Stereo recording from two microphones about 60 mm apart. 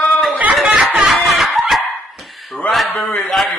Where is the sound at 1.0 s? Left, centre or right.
Centre.